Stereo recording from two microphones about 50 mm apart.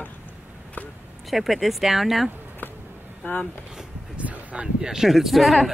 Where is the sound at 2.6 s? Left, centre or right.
Left.